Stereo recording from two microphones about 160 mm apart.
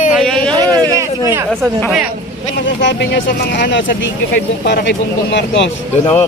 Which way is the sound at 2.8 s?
90° left.